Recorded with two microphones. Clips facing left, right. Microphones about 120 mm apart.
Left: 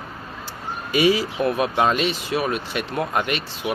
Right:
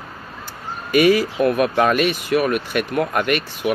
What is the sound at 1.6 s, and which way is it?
Speech, 25° left (ahead or behind).